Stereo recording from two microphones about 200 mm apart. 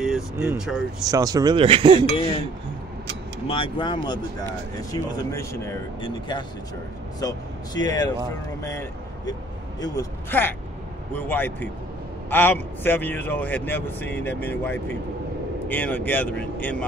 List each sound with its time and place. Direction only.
0.0 s vehicle: centre (ahead or behind)
0.5 s speech: 5° right (ahead or behind)
1.0 s speech: 20° right (ahead or behind)
3.4 s speech: 25° left (ahead or behind); by 16.7 s 10° left (ahead or behind)